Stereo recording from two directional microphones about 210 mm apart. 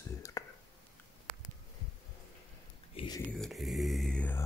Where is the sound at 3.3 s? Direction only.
Centre (ahead or behind).